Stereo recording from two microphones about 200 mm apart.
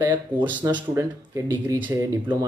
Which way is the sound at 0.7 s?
20° right (ahead or behind).